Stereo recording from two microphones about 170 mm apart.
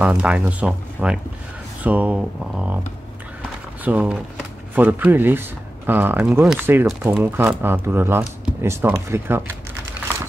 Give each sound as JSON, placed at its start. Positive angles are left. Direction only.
{"t": 0.0, "sound": "speech", "side_deg": -5}
{"t": 3.8, "sound": "speech", "side_deg": -10}